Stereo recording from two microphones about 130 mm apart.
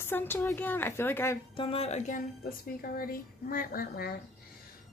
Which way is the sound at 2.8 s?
90° left.